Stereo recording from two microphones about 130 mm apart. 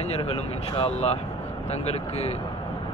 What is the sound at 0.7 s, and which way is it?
Speech, 55° left (ahead or behind).